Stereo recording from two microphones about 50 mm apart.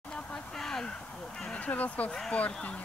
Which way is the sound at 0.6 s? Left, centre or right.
Centre.